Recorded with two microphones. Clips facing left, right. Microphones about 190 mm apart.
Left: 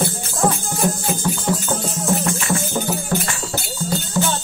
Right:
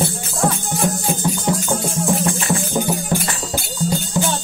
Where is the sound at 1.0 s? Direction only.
15° right (ahead or behind).